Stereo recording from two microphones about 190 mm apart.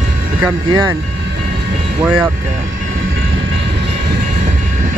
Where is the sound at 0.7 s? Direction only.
20° right (ahead or behind).